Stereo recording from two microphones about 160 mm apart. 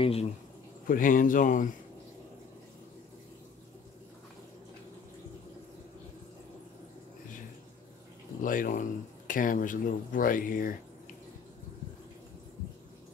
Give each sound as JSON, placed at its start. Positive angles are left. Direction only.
{"t": 0.0, "sound": "speech", "side_deg": 40}
{"t": 0.8, "sound": "speech", "side_deg": 60}
{"t": 8.4, "sound": "speech", "side_deg": 60}